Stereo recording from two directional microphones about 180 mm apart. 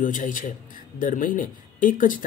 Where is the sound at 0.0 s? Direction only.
45° left (ahead or behind).